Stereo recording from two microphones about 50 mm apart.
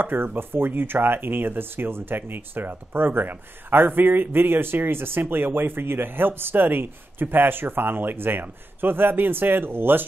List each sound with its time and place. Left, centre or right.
0.0 s speech: right